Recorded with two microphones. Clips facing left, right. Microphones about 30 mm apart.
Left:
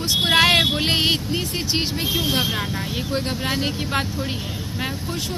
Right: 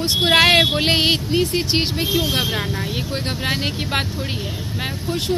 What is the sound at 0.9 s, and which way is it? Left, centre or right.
Speech, right.